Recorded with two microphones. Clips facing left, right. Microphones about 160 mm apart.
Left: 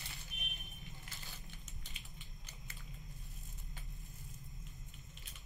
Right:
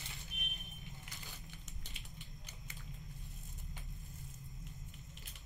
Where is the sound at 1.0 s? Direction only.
20° right (ahead or behind).